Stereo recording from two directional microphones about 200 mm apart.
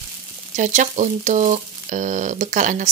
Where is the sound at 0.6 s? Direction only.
35° right (ahead or behind).